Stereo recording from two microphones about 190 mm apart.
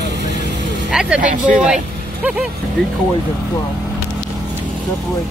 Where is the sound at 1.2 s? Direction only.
40° right (ahead or behind).